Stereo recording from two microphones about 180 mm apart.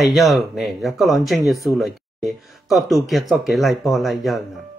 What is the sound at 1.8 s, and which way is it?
Speech, centre (ahead or behind).